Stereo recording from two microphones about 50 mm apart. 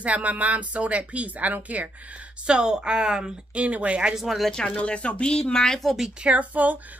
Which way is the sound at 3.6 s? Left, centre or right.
Right.